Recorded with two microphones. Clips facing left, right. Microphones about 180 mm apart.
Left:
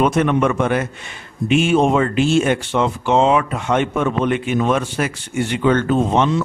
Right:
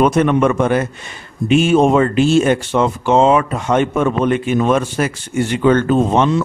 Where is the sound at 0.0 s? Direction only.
40° right (ahead or behind).